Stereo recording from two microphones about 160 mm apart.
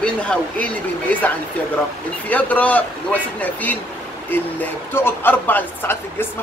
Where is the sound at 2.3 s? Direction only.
10° left (ahead or behind).